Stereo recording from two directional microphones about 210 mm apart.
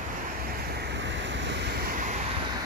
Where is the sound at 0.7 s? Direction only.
55° right (ahead or behind).